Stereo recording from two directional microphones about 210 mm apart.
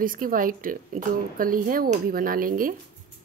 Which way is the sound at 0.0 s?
40° right (ahead or behind).